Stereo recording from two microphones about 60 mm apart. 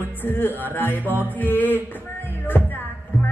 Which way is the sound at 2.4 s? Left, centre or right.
Left.